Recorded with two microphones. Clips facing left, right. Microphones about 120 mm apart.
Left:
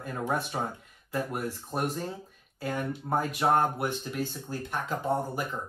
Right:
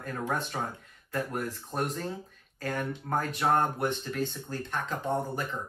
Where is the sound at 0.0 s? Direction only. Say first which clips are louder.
Left 1 dB; 10° left (ahead or behind).